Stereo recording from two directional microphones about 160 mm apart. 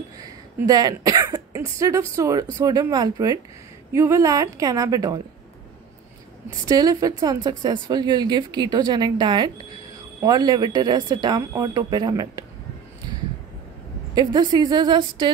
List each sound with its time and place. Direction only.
0.7 s speech: 25° right (ahead or behind)
6.7 s speech: 20° right (ahead or behind)
14.1 s speech: 25° right (ahead or behind)